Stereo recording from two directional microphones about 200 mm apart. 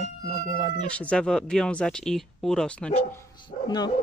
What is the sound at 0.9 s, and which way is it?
Speech, 5° left (ahead or behind).